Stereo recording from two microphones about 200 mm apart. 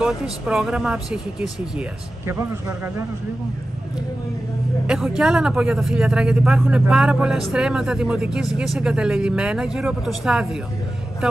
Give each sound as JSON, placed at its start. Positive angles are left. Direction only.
{"t": 0.0, "sound": "speech", "side_deg": -5}
{"t": 4.8, "sound": "speech", "side_deg": -5}